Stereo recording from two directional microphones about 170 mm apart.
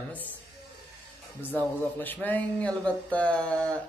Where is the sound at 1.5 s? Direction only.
10° left (ahead or behind).